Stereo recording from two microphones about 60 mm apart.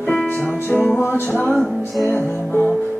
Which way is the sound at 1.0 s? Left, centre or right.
Left.